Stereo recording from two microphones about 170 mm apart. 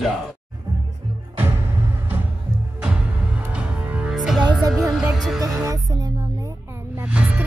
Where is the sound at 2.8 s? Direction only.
5° right (ahead or behind).